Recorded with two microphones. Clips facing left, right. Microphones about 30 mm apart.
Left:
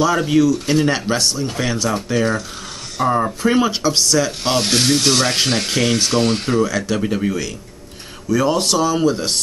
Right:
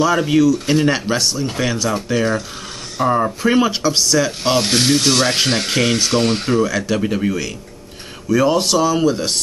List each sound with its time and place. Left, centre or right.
0.0 s speech: centre
4.6 s speech: right
5.1 s speech: centre
6.5 s speech: centre